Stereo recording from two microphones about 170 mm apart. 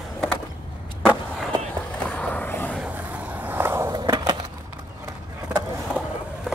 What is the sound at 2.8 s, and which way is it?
Skateboard, 10° right (ahead or behind).